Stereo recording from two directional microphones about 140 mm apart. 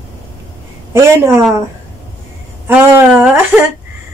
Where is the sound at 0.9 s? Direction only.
20° right (ahead or behind).